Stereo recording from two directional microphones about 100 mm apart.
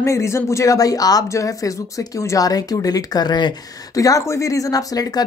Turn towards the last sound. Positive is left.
turn(degrees=35)  # may be behind; listen again after turning